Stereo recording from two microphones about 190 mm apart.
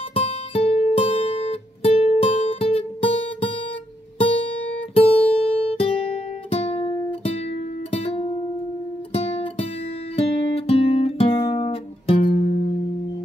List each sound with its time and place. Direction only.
0.1 s music: 30° left (ahead or behind)
4.2 s guitar: 30° left (ahead or behind)
9.1 s music: 30° left (ahead or behind)
10.1 s guitar: 30° left (ahead or behind)